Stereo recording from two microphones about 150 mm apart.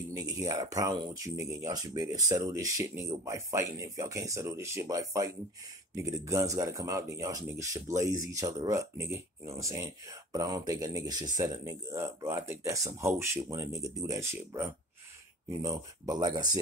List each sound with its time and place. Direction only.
0.1 s speech: 25° right (ahead or behind)